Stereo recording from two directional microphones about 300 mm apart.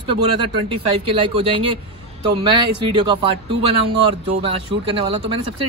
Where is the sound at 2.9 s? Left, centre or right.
Centre.